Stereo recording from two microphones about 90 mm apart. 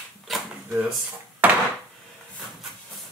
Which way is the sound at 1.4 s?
15° right (ahead or behind).